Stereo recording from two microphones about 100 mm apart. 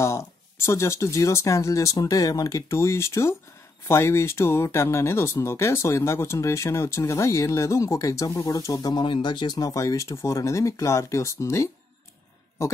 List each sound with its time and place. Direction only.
0.0 s speech: 25° left (ahead or behind)
9.0 s speech: 55° left (ahead or behind)
9.6 s speech: 35° left (ahead or behind)